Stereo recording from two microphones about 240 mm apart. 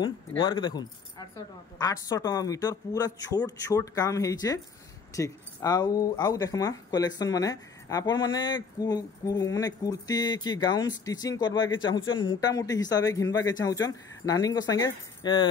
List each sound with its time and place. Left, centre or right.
0.4 s speech: centre